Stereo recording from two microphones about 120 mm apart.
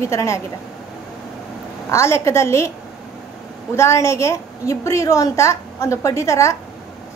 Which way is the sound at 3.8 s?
25° left (ahead or behind).